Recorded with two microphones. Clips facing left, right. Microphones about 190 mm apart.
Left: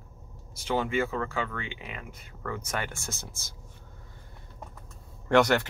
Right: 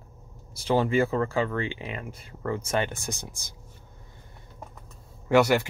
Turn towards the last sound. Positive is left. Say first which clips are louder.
# right 2 dB
turn(degrees=-10)  # may be behind; listen again after turning